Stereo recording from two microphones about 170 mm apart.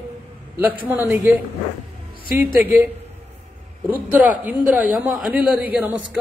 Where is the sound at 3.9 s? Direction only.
10° right (ahead or behind).